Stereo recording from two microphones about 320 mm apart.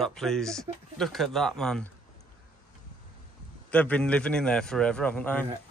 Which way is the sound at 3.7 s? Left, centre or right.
Centre.